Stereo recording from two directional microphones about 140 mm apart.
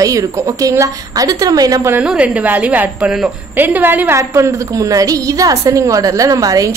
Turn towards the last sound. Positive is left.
turn(degrees=-25)  # may be behind; listen again after turning